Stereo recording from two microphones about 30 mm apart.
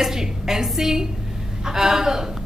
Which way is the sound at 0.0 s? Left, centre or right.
Centre.